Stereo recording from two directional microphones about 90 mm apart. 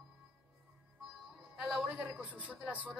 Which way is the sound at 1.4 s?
10° right (ahead or behind).